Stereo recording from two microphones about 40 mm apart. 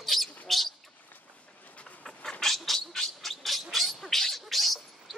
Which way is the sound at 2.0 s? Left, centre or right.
Centre.